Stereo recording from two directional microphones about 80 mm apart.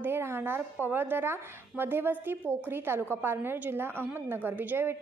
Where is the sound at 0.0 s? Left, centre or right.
Right.